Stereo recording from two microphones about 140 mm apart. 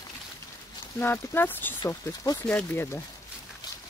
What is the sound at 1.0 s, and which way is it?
Speech, 15° left (ahead or behind).